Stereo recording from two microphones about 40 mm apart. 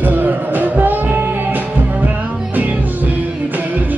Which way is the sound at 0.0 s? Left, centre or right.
Right.